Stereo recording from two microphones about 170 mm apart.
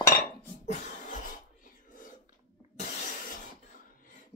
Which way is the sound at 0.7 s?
50° left (ahead or behind).